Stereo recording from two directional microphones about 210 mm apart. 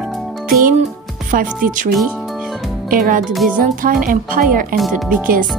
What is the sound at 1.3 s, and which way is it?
Speech, 40° right (ahead or behind).